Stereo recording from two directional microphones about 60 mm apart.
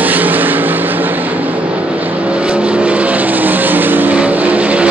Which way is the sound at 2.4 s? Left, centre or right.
Centre.